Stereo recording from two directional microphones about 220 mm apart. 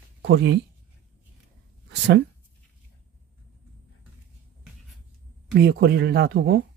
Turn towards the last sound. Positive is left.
turn(degrees=-45)  # may be behind; listen again after turning